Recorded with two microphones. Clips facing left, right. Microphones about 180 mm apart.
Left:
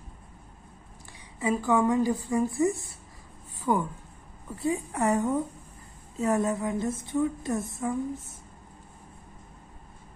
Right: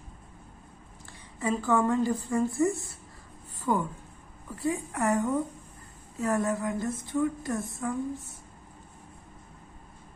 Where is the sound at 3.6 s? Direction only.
15° left (ahead or behind).